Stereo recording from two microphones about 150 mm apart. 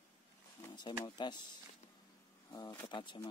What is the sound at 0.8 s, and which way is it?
Speech, 30° left (ahead or behind).